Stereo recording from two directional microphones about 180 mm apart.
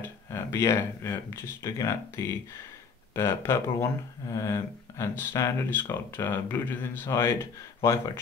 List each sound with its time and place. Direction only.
0.0 s speech: 15° left (ahead or behind)